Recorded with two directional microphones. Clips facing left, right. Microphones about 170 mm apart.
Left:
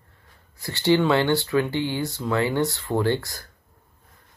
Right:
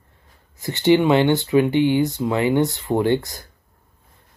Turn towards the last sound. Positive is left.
turn(degrees=-20)  # may be behind; listen again after turning